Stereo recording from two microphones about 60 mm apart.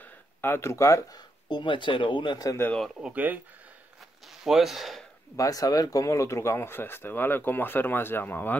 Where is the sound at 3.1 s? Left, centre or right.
Right.